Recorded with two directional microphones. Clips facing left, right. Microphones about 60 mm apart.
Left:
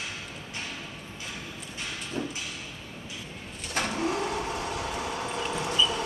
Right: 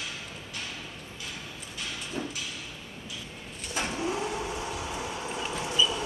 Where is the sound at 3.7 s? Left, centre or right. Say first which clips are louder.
Left 2 dB; left.